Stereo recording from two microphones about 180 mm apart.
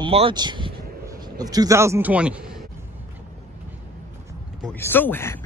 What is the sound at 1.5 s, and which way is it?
A man's voice, 20° right (ahead or behind).